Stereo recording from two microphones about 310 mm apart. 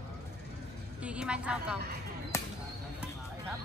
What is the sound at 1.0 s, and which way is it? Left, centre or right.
Speech, centre.